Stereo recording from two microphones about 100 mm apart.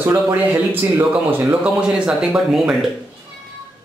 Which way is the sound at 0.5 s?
20° right (ahead or behind).